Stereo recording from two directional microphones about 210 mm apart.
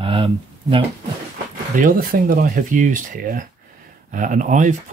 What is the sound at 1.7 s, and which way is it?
Speech, 40° right (ahead or behind).